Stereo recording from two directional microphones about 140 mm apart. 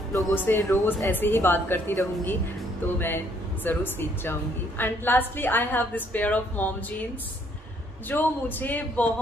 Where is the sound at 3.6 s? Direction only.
15° left (ahead or behind).